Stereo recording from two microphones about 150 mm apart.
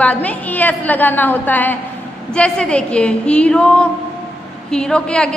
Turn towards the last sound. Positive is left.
turn(degrees=5)  # may be behind; listen again after turning